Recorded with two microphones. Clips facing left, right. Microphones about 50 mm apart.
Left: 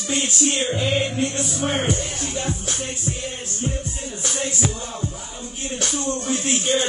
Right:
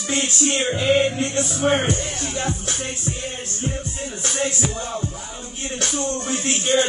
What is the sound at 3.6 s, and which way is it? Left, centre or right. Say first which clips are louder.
Music: even; centre.